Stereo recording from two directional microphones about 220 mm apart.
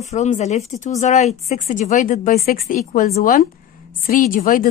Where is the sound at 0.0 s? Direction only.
30° left (ahead or behind).